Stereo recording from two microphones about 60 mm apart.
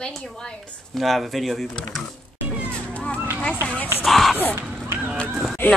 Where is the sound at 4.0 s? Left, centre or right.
Centre.